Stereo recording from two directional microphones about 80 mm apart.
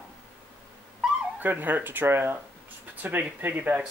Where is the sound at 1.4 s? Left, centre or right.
Right.